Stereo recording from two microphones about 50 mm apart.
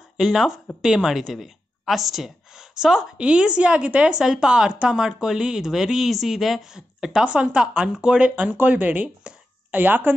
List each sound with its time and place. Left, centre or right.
0.2 s a woman's voice: centre
7.2 s a woman's voice: right
7.5 s a woman's voice: centre
8.5 s speech: right